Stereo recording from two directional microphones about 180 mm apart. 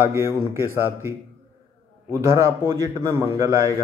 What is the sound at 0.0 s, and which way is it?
Speech, 15° right (ahead or behind).